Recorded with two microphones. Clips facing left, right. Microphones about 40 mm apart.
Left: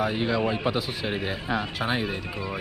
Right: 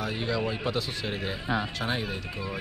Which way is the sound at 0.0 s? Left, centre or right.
Centre.